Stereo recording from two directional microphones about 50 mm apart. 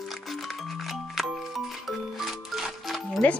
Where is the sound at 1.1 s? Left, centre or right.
Centre.